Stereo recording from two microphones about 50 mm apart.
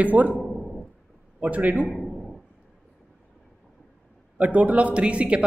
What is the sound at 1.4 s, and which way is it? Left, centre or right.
Speech, right.